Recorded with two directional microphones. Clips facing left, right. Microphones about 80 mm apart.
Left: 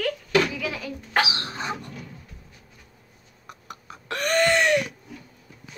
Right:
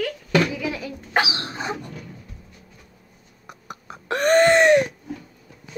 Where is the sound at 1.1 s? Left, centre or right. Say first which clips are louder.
Right 1 dB; right.